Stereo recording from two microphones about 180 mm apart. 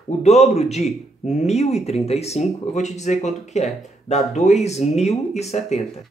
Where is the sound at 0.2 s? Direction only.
35° left (ahead or behind).